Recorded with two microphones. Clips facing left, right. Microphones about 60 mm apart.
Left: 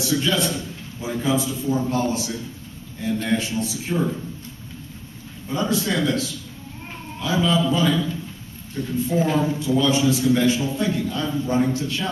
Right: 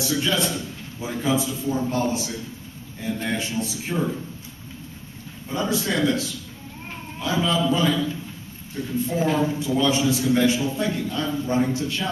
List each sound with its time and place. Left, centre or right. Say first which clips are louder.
0.0 s a man's voice: left 2 dB; centre
5.5 s a man's voice: left 2 dB; centre
6.9 s a sound: left 2 dB; centre
7.8 s a man's voice: left 1 dB; centre